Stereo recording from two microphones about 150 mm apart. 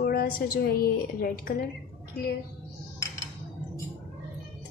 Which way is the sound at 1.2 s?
70° left (ahead or behind).